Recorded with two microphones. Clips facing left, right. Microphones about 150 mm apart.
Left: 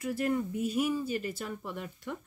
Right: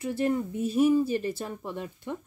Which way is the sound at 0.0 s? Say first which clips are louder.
Right 3 dB; 25° right (ahead or behind).